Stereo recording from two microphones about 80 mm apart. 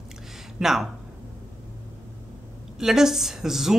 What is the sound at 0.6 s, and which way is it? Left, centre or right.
Speech, centre.